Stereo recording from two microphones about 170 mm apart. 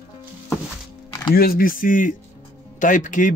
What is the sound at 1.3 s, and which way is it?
Speech, 60° left (ahead or behind).